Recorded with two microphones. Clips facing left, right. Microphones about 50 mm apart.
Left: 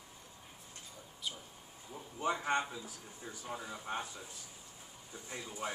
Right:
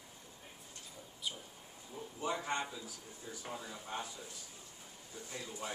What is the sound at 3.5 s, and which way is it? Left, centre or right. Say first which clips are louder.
Speech: left 4 dB; centre.